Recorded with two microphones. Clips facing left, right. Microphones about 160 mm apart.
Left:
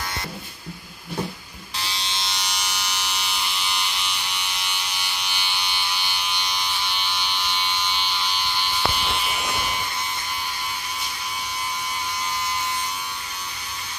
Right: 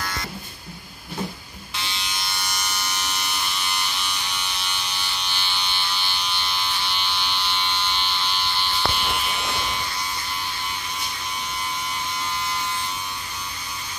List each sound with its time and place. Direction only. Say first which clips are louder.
1.8 s electric shaver: left 1 dB; 35° left (ahead or behind)
4.4 s electric shaver: even; 10° left (ahead or behind)